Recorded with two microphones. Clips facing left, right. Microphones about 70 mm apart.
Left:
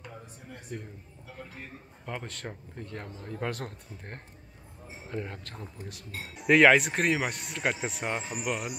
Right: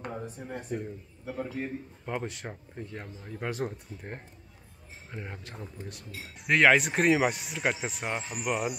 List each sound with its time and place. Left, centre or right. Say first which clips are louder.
0.0 s a sound: right 8 dB; right
1.2 s a man's voice: right 11 dB; right
2.0 s speech: right 3 dB; centre